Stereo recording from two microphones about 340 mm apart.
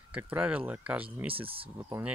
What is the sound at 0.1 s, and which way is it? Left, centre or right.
Speech, centre.